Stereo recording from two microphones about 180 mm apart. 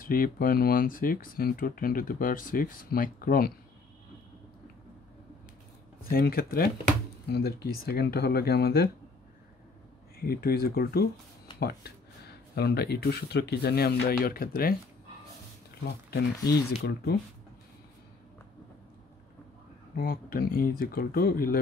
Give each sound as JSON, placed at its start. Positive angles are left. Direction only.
{"t": 0.0, "sound": "speech", "side_deg": 55}
{"t": 6.0, "sound": "speech", "side_deg": 55}
{"t": 10.1, "sound": "speech", "side_deg": 55}
{"t": 16.8, "sound": "speech", "side_deg": 60}
{"t": 20.0, "sound": "speech", "side_deg": 55}